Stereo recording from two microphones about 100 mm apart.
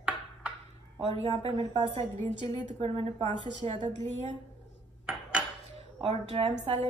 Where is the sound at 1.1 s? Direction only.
90° right.